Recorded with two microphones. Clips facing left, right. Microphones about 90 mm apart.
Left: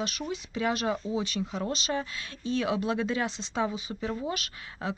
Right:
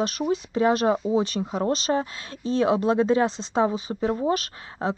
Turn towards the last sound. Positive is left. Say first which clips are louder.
# right 7 dB
turn(degrees=-35)  # may be behind; listen again after turning